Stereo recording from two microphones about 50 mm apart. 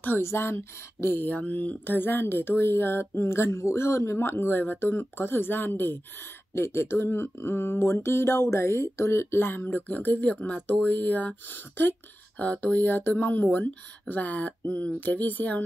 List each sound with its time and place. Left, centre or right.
0.2 s speech: left
1.0 s speech: left
4.2 s speech: left
6.5 s speech: left
9.7 s speech: left
12.4 s speech: left